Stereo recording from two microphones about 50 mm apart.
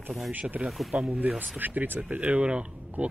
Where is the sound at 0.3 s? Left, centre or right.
Right.